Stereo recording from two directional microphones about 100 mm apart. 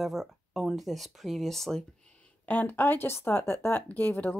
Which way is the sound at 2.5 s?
20° left (ahead or behind).